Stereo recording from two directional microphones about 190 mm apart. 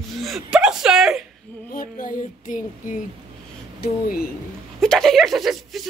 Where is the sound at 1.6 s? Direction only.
50° left (ahead or behind).